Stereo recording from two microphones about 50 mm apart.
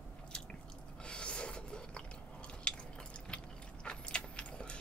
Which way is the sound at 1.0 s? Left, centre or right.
Centre.